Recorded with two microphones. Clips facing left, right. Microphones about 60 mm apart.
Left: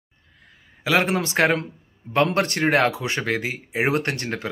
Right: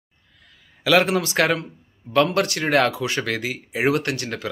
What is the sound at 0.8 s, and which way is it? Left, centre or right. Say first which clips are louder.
Speech: right 3 dB; left.